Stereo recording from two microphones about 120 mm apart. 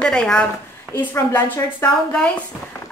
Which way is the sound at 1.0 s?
15° left (ahead or behind).